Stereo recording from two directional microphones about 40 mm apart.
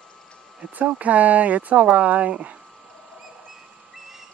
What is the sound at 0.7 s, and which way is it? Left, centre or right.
Speech, right.